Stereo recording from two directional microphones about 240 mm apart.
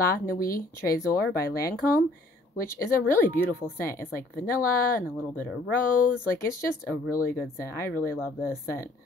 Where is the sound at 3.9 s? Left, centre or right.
Left.